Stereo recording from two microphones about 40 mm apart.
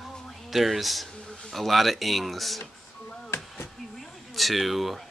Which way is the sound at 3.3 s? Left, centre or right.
Left.